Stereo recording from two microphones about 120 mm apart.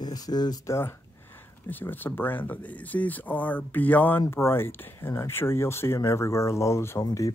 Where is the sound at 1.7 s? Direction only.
15° left (ahead or behind).